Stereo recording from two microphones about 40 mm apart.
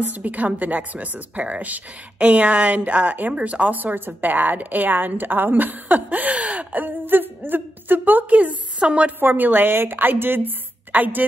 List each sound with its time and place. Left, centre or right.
0.0 s a woman's voice: right
3.3 s speech: right
3.7 s speech: right
6.0 s speech: right
8.8 s speech: right
9.2 s a woman's voice: right